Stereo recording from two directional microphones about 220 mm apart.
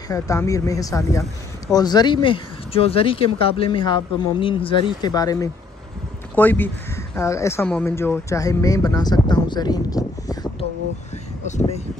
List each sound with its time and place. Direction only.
0.1 s speech: 15° left (ahead or behind)
11.4 s speech: 35° left (ahead or behind)